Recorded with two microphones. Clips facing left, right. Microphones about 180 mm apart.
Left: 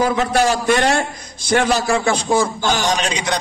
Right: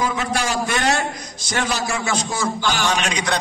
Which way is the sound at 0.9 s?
55° left (ahead or behind).